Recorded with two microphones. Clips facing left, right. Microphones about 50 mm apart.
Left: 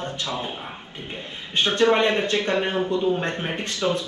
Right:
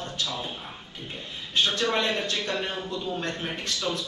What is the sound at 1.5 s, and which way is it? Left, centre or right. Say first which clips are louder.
Speech: left 6 dB; left.